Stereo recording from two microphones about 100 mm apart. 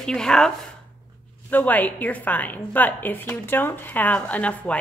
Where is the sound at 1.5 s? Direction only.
15° left (ahead or behind).